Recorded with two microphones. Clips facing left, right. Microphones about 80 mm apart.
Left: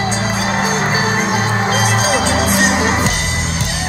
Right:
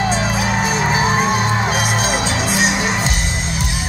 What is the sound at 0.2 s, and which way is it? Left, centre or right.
Music, left.